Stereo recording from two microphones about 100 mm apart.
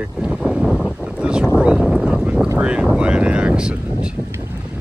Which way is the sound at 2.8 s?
10° right (ahead or behind).